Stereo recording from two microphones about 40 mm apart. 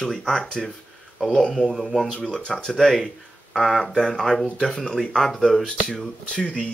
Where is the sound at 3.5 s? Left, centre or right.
Centre.